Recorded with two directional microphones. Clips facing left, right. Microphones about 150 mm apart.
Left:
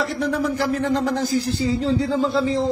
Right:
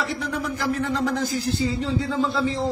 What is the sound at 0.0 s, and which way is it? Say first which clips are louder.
Speech: left 5 dB; 35° left (ahead or behind).